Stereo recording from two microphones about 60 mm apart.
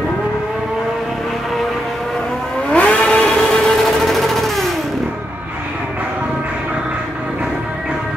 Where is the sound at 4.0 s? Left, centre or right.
Centre.